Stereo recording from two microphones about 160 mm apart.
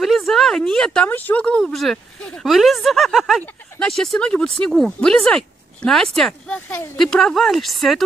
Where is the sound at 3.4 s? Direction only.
10° left (ahead or behind).